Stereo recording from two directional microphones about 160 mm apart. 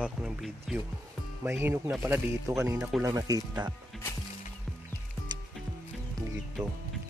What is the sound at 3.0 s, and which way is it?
Speech, 20° right (ahead or behind).